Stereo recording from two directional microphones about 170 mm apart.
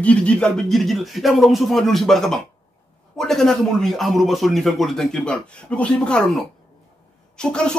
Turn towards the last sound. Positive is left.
turn(degrees=5)  # may be behind; listen again after turning